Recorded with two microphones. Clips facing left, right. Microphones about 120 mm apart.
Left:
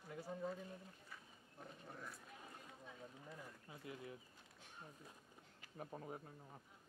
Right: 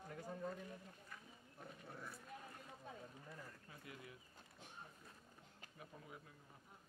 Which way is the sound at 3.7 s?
25° left (ahead or behind).